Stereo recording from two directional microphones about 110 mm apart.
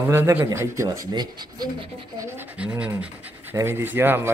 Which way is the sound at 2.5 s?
10° right (ahead or behind).